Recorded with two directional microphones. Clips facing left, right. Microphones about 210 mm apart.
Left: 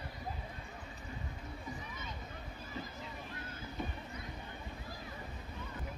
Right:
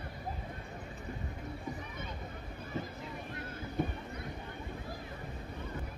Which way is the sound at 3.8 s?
55° right (ahead or behind).